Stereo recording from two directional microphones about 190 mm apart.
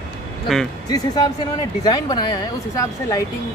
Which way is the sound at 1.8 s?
20° left (ahead or behind).